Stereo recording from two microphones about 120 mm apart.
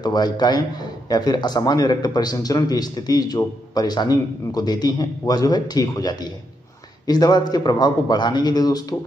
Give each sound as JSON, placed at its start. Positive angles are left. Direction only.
{"t": 0.0, "sound": "a man's voice", "side_deg": 35}